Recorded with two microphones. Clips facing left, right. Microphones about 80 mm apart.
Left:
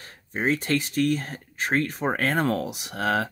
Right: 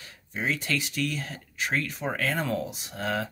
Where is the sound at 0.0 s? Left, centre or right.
Left.